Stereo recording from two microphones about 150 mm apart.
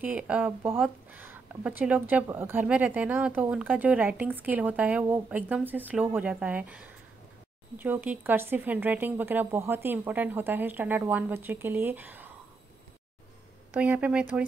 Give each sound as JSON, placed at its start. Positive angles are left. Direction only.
{"t": 0.0, "sound": "speech", "side_deg": -10}
{"t": 13.7, "sound": "speech", "side_deg": -10}